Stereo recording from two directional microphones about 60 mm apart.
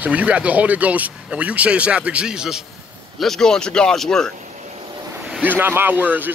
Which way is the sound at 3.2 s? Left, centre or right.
Centre.